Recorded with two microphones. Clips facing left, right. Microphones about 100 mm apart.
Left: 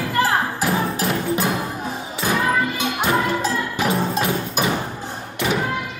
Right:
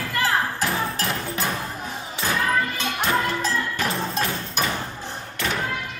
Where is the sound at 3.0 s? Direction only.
15° left (ahead or behind).